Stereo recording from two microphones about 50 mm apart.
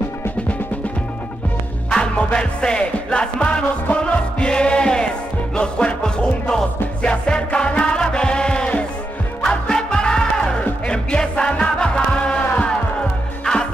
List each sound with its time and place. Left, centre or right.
1.9 s music: centre